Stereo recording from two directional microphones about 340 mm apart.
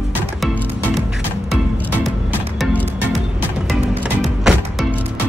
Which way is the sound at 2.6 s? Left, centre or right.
Centre.